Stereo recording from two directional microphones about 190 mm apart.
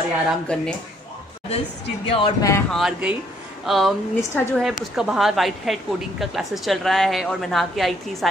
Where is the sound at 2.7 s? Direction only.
5° right (ahead or behind).